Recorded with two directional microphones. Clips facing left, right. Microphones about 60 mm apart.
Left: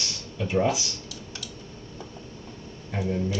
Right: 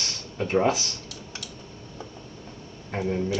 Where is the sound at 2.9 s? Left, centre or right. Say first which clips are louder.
Right 1 dB; right.